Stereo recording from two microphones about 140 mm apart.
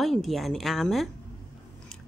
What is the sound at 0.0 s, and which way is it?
A woman's voice, centre (ahead or behind).